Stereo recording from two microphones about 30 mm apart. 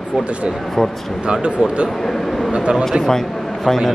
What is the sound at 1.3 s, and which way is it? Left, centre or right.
Speech, right.